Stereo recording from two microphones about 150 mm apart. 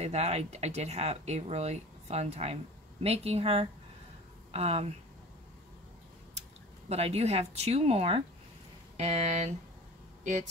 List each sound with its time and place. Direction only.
0.0 s speech: 45° right (ahead or behind)
6.9 s speech: 45° right (ahead or behind)